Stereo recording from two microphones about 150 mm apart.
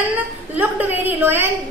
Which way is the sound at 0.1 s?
10° right (ahead or behind).